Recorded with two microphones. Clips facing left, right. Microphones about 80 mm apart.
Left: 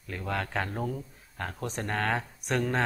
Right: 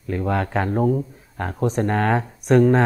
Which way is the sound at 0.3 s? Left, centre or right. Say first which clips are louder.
Right 9 dB; right.